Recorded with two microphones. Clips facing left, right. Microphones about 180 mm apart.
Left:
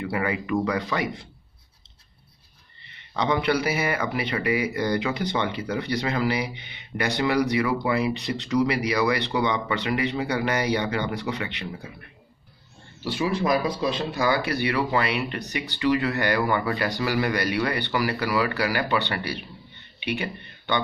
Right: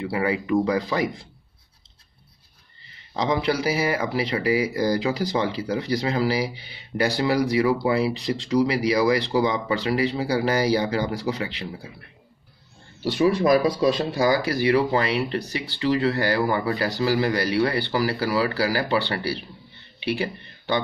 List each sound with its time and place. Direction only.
0.0 s speech: 30° right (ahead or behind)
2.9 s speech: 30° right (ahead or behind)
13.0 s speech: 40° right (ahead or behind)